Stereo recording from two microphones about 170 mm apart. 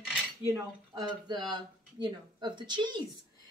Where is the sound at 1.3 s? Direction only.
25° right (ahead or behind).